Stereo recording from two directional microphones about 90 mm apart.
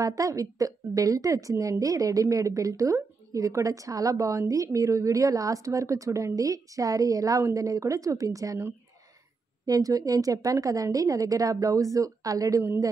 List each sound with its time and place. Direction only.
0.0 s a woman's voice: 40° right (ahead or behind)
9.7 s a woman's voice: 40° right (ahead or behind)